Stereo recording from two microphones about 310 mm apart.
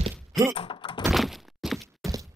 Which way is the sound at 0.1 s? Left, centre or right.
Centre.